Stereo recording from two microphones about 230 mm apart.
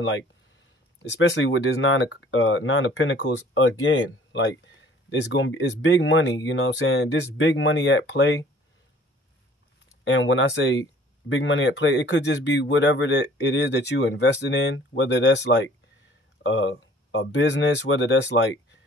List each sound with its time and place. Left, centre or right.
1.0 s speech: left
10.0 s speech: left